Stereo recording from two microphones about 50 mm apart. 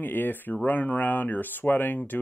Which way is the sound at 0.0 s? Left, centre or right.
Left.